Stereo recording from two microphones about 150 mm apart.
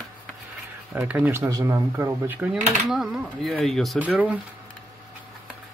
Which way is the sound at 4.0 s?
10° right (ahead or behind).